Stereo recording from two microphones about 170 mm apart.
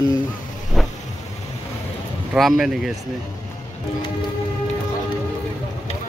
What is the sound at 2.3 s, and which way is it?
Speech, centre (ahead or behind).